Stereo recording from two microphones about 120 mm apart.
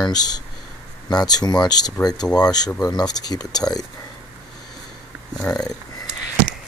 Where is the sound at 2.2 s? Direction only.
5° left (ahead or behind).